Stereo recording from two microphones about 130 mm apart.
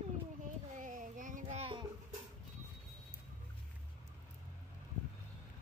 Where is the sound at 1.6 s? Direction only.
40° right (ahead or behind).